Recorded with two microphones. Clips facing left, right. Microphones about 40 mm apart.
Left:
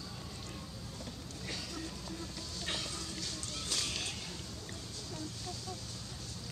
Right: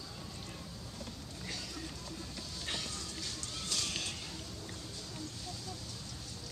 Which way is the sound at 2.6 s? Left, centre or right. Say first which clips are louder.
Left 1 dB; centre.